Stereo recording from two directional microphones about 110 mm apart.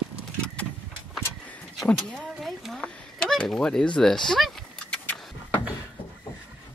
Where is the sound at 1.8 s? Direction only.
5° left (ahead or behind).